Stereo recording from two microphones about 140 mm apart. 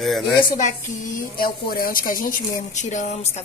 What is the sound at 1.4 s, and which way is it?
A woman's voice, 90° left.